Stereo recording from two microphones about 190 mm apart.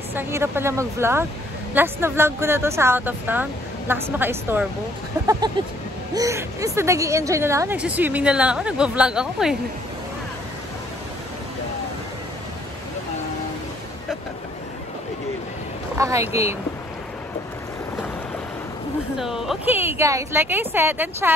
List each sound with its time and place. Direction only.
0.1 s a woman's voice: 10° right (ahead or behind)
16.0 s a woman's voice: 15° right (ahead or behind)
19.1 s speech: centre (ahead or behind)
19.7 s a woman's voice: 10° right (ahead or behind)